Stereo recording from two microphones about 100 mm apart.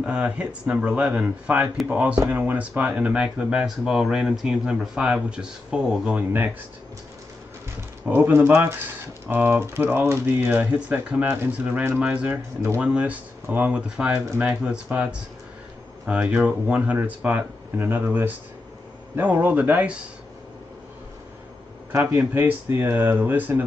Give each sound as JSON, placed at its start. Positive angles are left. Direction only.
{"t": 0.0, "sound": "speech", "side_deg": -10}
{"t": 8.0, "sound": "speech", "side_deg": -20}
{"t": 22.3, "sound": "speech", "side_deg": -25}